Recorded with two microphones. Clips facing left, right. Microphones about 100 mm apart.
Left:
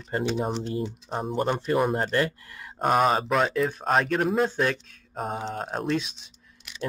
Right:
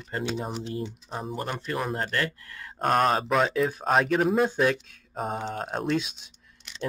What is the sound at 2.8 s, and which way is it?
Speech, 5° left (ahead or behind).